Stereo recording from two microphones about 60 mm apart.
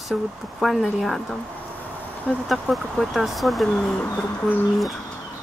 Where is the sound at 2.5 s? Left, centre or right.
Centre.